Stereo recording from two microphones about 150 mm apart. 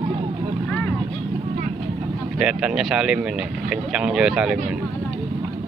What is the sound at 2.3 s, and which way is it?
Speech, 5° right (ahead or behind).